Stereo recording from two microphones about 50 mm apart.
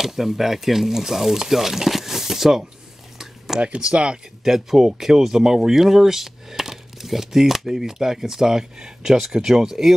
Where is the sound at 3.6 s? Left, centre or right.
Centre.